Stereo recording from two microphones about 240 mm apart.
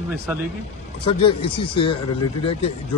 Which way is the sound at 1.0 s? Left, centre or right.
Left.